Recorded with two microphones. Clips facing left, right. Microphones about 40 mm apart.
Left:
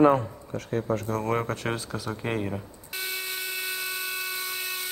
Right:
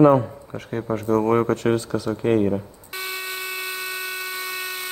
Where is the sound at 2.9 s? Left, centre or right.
Right.